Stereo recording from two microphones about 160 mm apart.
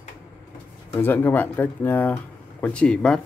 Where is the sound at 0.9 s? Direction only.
10° left (ahead or behind).